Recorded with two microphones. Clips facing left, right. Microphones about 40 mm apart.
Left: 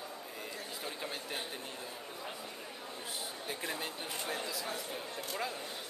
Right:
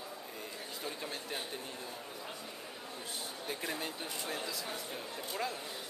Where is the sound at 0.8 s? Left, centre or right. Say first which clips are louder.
Right 1 dB; centre.